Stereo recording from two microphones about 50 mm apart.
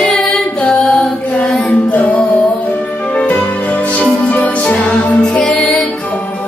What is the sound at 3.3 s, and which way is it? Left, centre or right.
Music, left.